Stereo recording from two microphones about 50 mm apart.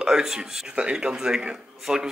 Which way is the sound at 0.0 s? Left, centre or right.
Centre.